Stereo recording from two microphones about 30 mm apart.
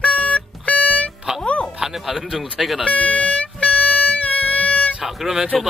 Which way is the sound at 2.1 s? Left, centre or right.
Centre.